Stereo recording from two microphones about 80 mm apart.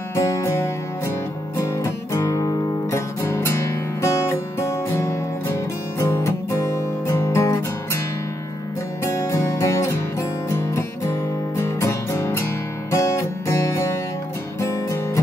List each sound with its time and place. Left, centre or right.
0.1 s music: left
1.6 s guitar: left
9.0 s music: left